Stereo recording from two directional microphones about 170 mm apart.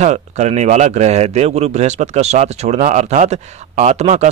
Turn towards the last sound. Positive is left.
turn(degrees=-40)  # may be behind; listen again after turning